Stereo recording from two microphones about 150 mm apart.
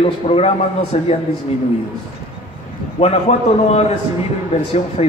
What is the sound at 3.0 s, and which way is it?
A man's voice, 45° left (ahead or behind).